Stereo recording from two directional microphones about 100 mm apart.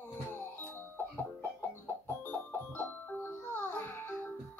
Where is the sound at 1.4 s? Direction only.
20° left (ahead or behind).